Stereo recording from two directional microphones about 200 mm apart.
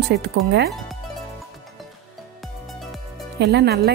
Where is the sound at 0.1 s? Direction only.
55° right (ahead or behind).